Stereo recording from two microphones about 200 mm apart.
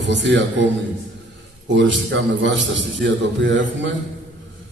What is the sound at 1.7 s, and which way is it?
A man's voice, 65° right (ahead or behind).